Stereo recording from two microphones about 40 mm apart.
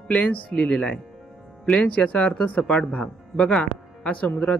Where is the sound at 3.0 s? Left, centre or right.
Centre.